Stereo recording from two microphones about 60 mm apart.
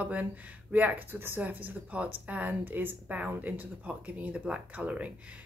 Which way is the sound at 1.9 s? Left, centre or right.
Right.